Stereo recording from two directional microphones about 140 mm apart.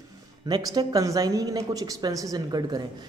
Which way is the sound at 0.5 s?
25° right (ahead or behind).